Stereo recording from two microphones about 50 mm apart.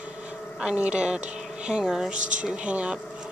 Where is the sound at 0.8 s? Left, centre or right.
Centre.